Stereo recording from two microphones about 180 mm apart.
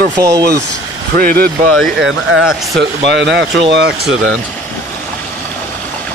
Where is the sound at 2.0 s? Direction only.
90° right.